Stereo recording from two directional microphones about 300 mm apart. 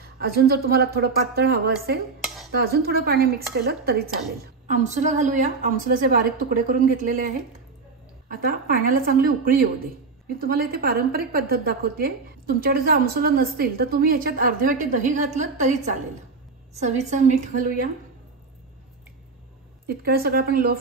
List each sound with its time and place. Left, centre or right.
0.0 s a woman's voice: right
8.3 s a woman's voice: right
19.9 s a woman's voice: right